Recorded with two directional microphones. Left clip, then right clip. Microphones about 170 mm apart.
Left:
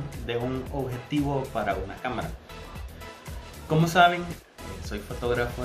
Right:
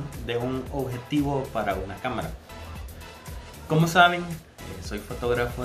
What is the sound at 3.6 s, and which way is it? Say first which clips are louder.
Speech: right 1 dB; 5° right (ahead or behind).